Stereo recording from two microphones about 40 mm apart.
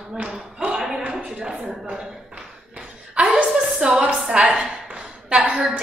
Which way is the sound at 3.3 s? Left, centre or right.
Centre.